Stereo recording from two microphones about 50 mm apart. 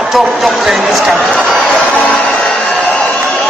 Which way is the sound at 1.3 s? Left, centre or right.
Centre.